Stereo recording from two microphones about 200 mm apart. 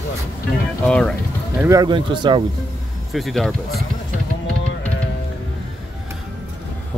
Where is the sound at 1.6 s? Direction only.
15° right (ahead or behind).